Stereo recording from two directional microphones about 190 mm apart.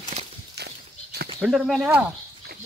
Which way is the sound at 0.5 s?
60° right (ahead or behind).